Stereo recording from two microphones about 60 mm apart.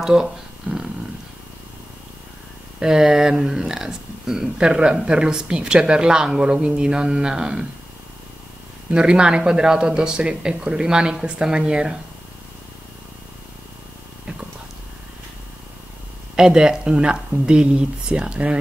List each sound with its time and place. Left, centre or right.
0.0 s a sound: centre
2.8 s speech: centre
8.9 s speech: centre
16.3 s speech: centre